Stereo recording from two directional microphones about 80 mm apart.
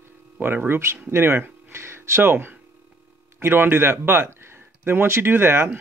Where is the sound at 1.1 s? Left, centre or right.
Right.